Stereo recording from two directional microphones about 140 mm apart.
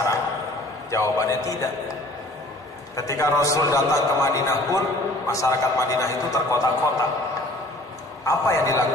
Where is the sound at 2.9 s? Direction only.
20° left (ahead or behind).